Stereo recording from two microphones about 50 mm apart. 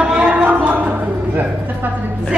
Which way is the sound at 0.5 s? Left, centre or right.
Right.